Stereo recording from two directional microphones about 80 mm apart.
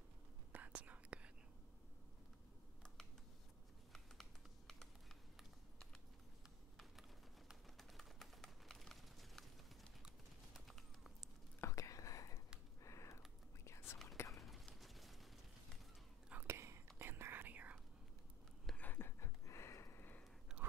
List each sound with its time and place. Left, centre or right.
0.5 s whispering: centre
3.9 s computer keyboard: centre
6.8 s a sound: centre
10.7 s clip-clop: centre
11.6 s whispering: left
12.8 s typing: left
13.7 s whispering: left
14.3 s a sound: centre
16.4 s whispering: right
18.8 s a sound: left